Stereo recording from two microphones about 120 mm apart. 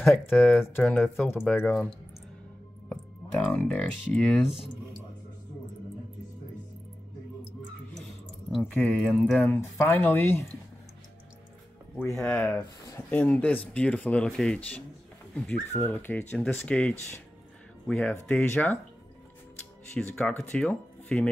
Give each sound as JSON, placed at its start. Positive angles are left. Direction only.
{"t": 0.4, "sound": "speech", "side_deg": 15}
{"t": 2.9, "sound": "music", "side_deg": 0}
{"t": 3.5, "sound": "speech", "side_deg": 10}
{"t": 8.5, "sound": "speech", "side_deg": 0}
{"t": 9.4, "sound": "speech", "side_deg": 15}
{"t": 12.2, "sound": "speech", "side_deg": 5}
{"t": 15.7, "sound": "speech", "side_deg": 20}
{"t": 20.0, "sound": "speech", "side_deg": 10}